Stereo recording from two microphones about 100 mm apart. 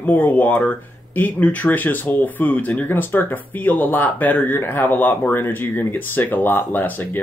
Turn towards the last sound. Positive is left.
turn(degrees=20)  # may be behind; listen again after turning